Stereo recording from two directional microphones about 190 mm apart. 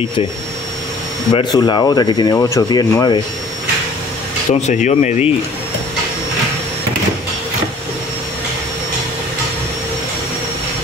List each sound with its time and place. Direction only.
1.3 s speech: 25° left (ahead or behind)
4.5 s speech: 40° left (ahead or behind)